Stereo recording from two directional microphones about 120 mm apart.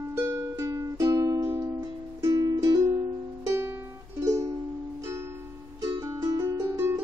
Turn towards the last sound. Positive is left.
turn(degrees=-20)  # may be behind; listen again after turning